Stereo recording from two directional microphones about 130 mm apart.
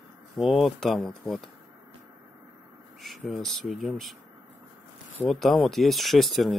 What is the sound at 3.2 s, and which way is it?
Speech, centre (ahead or behind).